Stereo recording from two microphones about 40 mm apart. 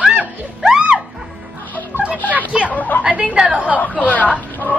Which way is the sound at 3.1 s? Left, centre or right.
Right.